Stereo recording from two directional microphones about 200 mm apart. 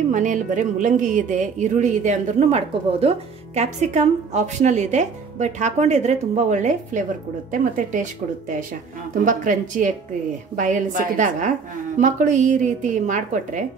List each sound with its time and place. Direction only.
0.1 s speech: 40° right (ahead or behind)